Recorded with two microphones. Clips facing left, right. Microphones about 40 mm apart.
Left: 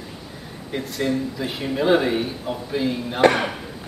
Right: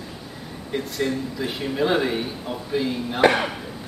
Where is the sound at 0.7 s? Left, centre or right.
Centre.